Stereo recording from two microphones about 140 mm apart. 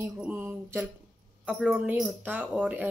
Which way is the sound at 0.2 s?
10° right (ahead or behind).